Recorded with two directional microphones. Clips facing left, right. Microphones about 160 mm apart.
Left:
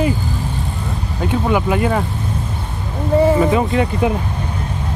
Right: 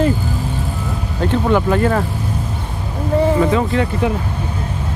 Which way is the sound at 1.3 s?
10° left (ahead or behind).